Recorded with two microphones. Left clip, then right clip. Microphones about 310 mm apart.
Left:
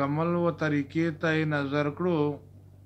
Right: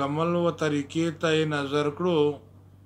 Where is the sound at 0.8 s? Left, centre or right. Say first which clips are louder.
Right 1 dB; right.